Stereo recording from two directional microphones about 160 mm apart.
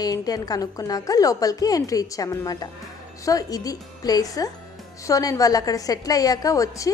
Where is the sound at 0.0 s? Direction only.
25° left (ahead or behind).